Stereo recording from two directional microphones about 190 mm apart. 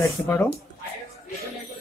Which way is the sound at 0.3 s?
15° left (ahead or behind).